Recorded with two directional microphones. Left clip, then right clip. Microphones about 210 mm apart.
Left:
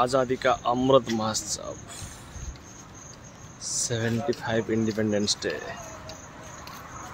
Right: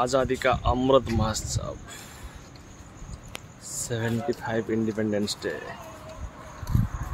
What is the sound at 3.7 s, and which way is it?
Speech, centre (ahead or behind).